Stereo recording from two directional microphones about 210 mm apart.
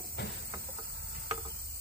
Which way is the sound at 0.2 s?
50° left (ahead or behind).